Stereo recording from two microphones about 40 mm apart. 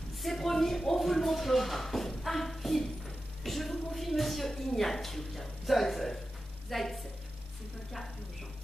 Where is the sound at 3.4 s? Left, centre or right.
Centre.